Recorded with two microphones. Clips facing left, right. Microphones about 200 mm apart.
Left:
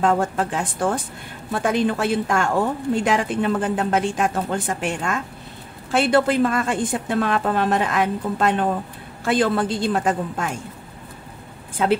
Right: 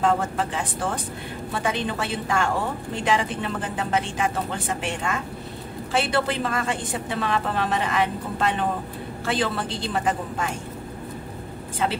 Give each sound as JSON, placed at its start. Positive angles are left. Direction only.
{"t": 0.0, "sound": "a woman's voice", "side_deg": 50}